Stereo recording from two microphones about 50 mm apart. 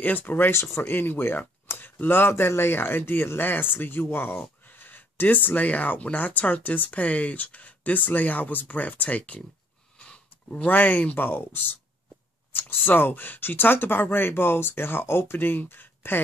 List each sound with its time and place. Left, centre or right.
0.0 s speech: left
0.5 s speech: left
0.8 s speech: left